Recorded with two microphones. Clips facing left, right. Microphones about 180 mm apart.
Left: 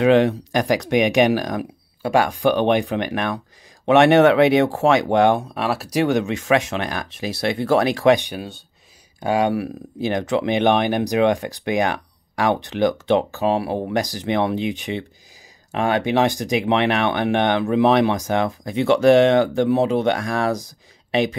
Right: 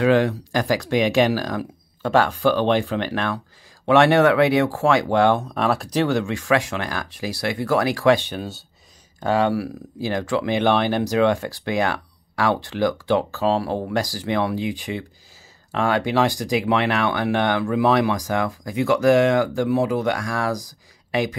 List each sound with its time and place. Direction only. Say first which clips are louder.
0.0 s speech: left 3 dB; 20° left (ahead or behind)
5.5 s speech: right 1 dB; 5° left (ahead or behind)
8.4 s speech: right 1 dB; centre (ahead or behind)
9.2 s speech: even; 15° left (ahead or behind)